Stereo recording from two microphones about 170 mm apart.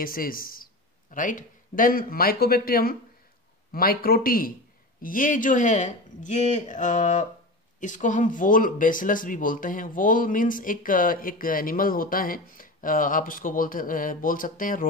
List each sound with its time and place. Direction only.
0.0 s speech: 55° left (ahead or behind)